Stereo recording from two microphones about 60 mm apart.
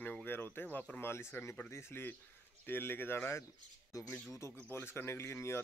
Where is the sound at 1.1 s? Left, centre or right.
Left.